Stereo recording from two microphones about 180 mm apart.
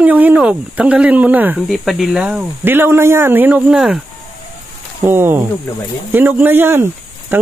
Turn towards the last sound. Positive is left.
turn(degrees=-10)  # may be behind; listen again after turning